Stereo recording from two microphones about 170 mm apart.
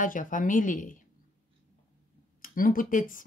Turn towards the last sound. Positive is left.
turn(degrees=50)  # may be behind; listen again after turning